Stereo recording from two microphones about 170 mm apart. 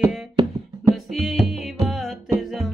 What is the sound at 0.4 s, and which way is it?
Music, 30° right (ahead or behind).